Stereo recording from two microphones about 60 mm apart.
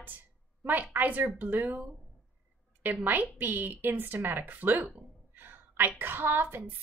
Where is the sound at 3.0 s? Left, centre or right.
Right.